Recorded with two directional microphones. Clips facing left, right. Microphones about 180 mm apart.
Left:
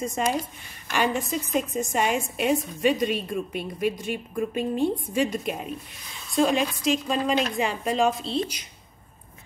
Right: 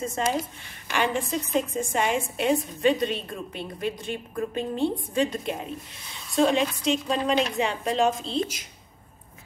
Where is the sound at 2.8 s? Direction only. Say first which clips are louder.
Even; 15° left (ahead or behind).